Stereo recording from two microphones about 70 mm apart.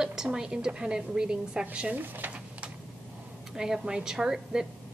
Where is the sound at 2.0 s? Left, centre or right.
Right.